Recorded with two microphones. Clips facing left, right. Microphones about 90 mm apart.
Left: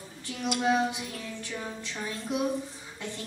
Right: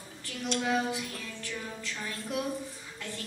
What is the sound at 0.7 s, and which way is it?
A woman's voice, 20° left (ahead or behind).